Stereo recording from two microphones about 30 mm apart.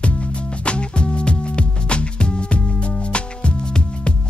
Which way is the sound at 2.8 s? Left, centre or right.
Left.